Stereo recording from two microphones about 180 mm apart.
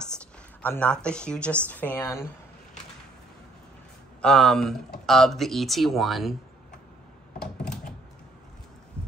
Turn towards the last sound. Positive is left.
turn(degrees=5)  # may be behind; listen again after turning